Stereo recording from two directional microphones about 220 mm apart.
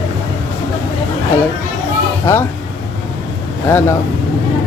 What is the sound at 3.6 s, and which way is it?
Speech, 10° left (ahead or behind).